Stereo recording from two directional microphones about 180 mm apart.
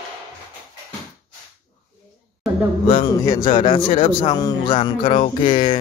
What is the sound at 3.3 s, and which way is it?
Speech, 25° left (ahead or behind).